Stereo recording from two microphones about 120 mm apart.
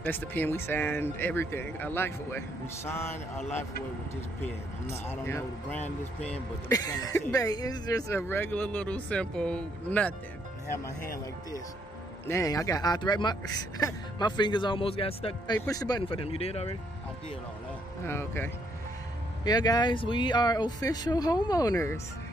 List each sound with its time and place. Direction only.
0.0 s speech: 15° left (ahead or behind)
5.0 s speech: 20° left (ahead or behind)
6.7 s speech: 30° left (ahead or behind)
8.1 s speech: 20° left (ahead or behind)
12.3 s speech: 25° left (ahead or behind); by 15.3 s 50° left (ahead or behind)
15.6 s speech: 30° left (ahead or behind)
16.1 s speech: 50° left (ahead or behind)
18.0 s speech: 20° left (ahead or behind)
19.4 s speech: 35° left (ahead or behind)